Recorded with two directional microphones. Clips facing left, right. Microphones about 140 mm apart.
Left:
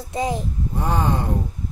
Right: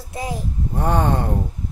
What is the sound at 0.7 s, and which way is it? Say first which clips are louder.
Speech: right 3 dB; 60° right (ahead or behind).